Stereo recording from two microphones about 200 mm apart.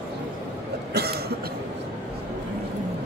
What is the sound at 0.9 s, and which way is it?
Cough, 50° right (ahead or behind).